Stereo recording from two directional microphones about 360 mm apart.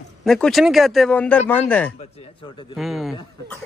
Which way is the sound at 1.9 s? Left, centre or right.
Centre.